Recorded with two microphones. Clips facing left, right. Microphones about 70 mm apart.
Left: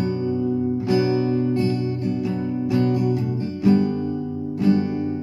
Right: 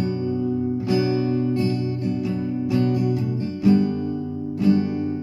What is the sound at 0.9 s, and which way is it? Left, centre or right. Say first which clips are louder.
Music: left 1 dB; left.